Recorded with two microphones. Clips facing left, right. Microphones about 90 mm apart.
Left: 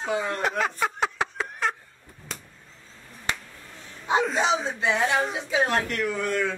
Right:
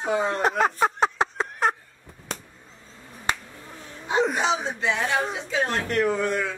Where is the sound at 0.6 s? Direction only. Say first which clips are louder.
Right 4 dB; 35° right (ahead or behind).